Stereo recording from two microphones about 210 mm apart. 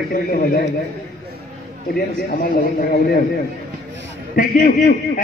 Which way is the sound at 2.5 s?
45° left (ahead or behind).